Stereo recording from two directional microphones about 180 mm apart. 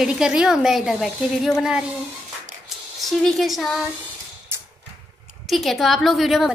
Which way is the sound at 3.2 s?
Centre (ahead or behind).